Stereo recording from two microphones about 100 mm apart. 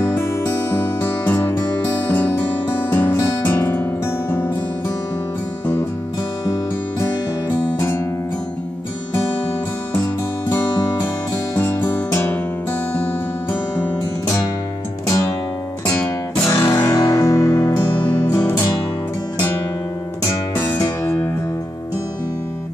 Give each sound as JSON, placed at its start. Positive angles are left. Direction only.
{"t": 0.0, "sound": "music", "side_deg": 25}
{"t": 11.5, "sound": "music", "side_deg": 20}
{"t": 16.4, "sound": "music", "side_deg": 30}
{"t": 18.0, "sound": "music", "side_deg": 15}
{"t": 20.8, "sound": "music", "side_deg": 35}